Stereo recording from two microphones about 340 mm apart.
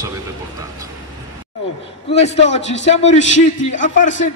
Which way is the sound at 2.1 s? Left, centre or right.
Centre.